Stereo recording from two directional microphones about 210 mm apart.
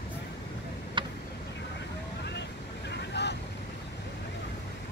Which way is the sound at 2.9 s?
55° left (ahead or behind).